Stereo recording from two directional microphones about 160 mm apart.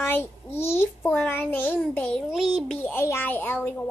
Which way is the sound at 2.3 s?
Centre (ahead or behind).